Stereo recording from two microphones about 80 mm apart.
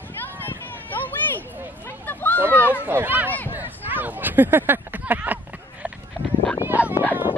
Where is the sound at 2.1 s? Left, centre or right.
Left.